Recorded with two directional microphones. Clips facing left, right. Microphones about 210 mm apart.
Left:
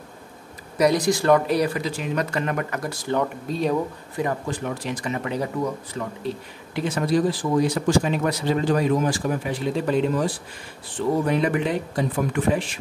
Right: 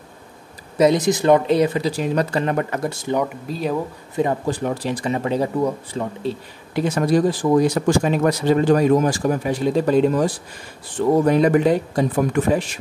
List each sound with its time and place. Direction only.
0.7 s speech: 20° right (ahead or behind)
1.8 s speech: 35° right (ahead or behind)
3.2 s speech: centre (ahead or behind)
4.2 s speech: 30° right (ahead or behind)
6.7 s speech: 45° right (ahead or behind)